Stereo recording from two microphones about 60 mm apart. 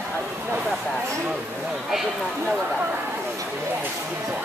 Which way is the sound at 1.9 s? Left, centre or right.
Centre.